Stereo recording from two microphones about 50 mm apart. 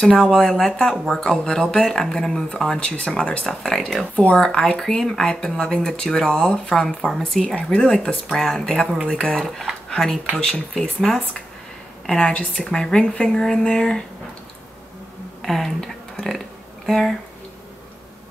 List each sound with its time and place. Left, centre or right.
0.0 s a woman's voice: centre
7.5 s a woman's voice: left
9.8 s a sound: centre
10.4 s a woman's voice: centre
12.1 s a woman's voice: centre
15.4 s a woman's voice: centre